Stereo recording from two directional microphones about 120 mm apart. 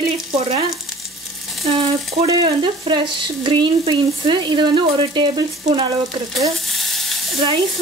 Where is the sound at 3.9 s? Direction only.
40° right (ahead or behind).